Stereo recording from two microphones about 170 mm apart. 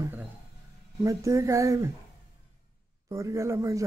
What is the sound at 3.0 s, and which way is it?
Speech, 20° right (ahead or behind).